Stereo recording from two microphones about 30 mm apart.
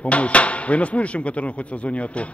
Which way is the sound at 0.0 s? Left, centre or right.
Left.